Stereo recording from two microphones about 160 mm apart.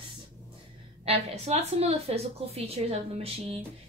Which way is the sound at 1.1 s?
40° right (ahead or behind).